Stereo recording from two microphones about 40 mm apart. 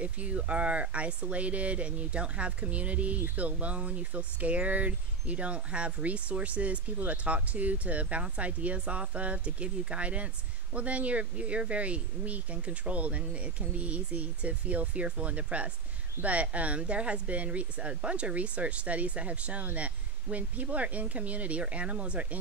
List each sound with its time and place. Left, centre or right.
0.0 s speech: right